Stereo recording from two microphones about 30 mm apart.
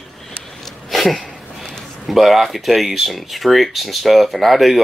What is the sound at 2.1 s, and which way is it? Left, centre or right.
Speech, centre.